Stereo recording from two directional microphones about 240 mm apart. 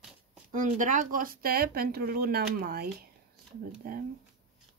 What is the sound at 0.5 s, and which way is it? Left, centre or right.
Speech, right.